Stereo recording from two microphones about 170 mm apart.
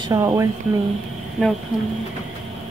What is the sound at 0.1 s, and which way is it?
Speech, 20° right (ahead or behind).